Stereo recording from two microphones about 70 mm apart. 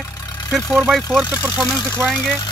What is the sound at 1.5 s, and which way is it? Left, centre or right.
Speech, left.